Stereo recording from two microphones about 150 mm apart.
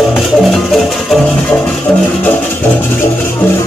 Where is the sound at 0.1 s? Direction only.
Centre (ahead or behind).